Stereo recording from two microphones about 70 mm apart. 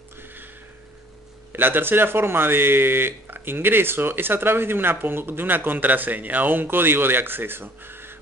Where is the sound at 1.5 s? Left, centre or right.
Right.